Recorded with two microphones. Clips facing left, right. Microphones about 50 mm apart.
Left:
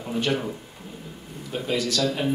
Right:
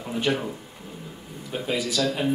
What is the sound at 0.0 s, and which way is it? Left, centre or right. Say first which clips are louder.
Speech: even; centre.